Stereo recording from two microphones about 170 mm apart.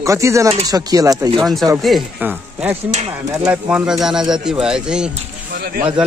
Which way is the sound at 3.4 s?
10° right (ahead or behind).